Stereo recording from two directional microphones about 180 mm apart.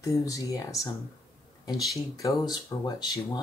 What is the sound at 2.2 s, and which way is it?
Speech, 20° left (ahead or behind).